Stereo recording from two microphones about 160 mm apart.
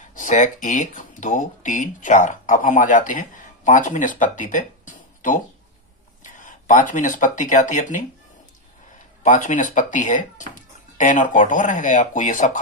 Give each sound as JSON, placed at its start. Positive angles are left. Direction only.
{"t": 0.1, "sound": "speech", "side_deg": 50}